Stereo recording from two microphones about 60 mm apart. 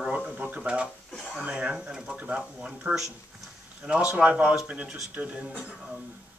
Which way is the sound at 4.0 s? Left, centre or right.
Right.